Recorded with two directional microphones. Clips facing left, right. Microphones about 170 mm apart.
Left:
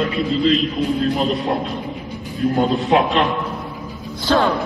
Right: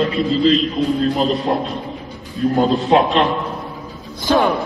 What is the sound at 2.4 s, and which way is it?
Speech, 35° right (ahead or behind).